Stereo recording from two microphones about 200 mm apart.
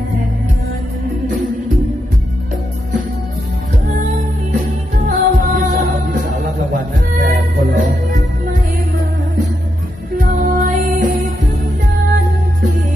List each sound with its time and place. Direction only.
5.0 s music: 40° right (ahead or behind)
10.1 s music: 40° right (ahead or behind)